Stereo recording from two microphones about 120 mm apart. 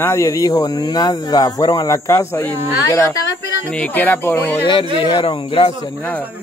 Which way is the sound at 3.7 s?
15° left (ahead or behind).